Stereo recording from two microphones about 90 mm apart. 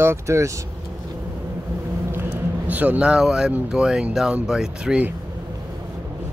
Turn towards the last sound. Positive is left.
turn(degrees=-5)  # may be behind; listen again after turning